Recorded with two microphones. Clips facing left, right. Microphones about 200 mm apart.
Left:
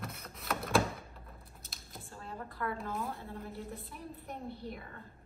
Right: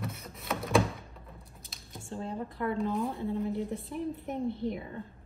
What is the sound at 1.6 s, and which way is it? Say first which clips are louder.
Squish: right 3 dB; centre (ahead or behind).